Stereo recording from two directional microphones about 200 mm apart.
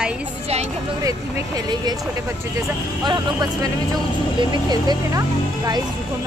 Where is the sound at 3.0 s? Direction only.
20° right (ahead or behind).